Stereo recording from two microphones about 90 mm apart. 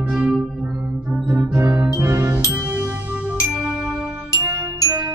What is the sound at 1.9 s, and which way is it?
Music, 30° right (ahead or behind).